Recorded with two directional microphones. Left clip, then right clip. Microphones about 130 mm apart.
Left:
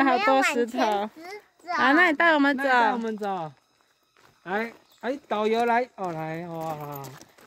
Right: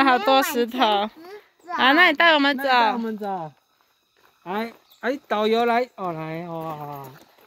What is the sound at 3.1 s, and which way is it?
Speech, 15° right (ahead or behind).